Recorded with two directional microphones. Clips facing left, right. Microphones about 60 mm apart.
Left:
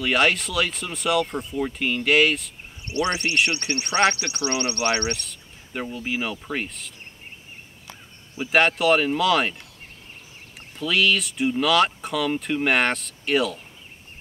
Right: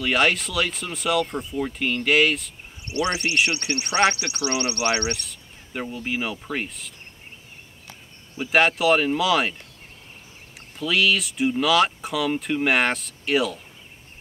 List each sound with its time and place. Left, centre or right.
0.0 s speech: centre
2.9 s a man's voice: left
3.8 s speech: centre
4.2 s a man's voice: left
5.2 s speech: centre
8.4 s speech: centre
10.8 s speech: centre